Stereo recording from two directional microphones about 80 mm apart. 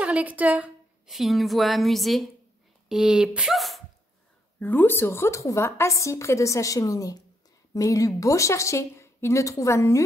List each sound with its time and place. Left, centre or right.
0.0 s a woman's voice: centre
1.0 s a woman's voice: centre
4.6 s a woman's voice: left